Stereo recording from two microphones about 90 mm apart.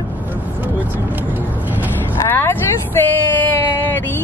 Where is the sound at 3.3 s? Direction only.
25° left (ahead or behind).